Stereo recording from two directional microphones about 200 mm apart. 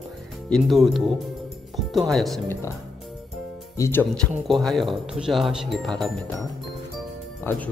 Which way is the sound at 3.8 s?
10° left (ahead or behind).